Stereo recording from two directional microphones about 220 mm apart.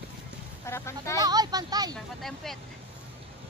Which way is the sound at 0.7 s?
10° left (ahead or behind).